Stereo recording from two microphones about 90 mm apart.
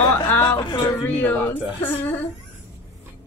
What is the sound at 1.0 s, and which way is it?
Speech, 20° left (ahead or behind).